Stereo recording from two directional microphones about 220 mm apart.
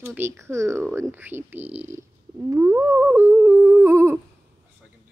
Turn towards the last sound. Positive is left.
turn(degrees=-10)  # may be behind; listen again after turning